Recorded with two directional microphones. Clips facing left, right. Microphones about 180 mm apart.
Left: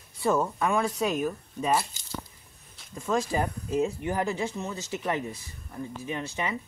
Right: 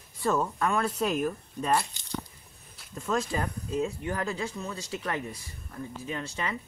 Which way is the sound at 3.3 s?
25° left (ahead or behind).